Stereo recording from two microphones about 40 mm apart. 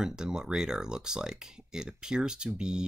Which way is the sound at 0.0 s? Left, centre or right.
Centre.